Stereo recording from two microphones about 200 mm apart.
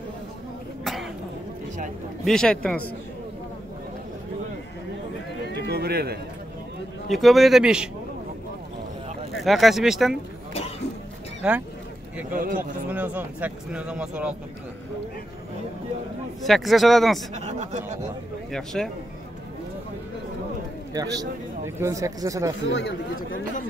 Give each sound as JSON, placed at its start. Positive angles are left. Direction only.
{"t": 2.2, "sound": "a man's voice", "side_deg": 5}
{"t": 5.4, "sound": "run", "side_deg": -55}
{"t": 7.1, "sound": "a man's voice", "side_deg": 0}
{"t": 9.4, "sound": "a man's voice", "side_deg": 0}
{"t": 11.4, "sound": "a man's voice", "side_deg": -5}
{"t": 12.3, "sound": "a man's voice", "side_deg": -45}
{"t": 12.9, "sound": "speech", "side_deg": -10}
{"t": 16.4, "sound": "a man's voice", "side_deg": 0}
{"t": 17.3, "sound": "speech", "side_deg": -35}
{"t": 18.5, "sound": "a man's voice", "side_deg": 0}
{"t": 20.9, "sound": "speech", "side_deg": -20}
{"t": 22.7, "sound": "speech", "side_deg": 65}
{"t": 23.1, "sound": "speech", "side_deg": 45}